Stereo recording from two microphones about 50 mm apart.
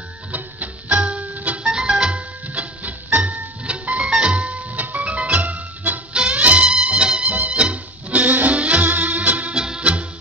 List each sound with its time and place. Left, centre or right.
0.3 s music: right
1.7 s music: centre
9.6 s music: centre